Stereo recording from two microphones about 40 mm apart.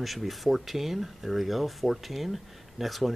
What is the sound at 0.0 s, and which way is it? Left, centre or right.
Speech, centre.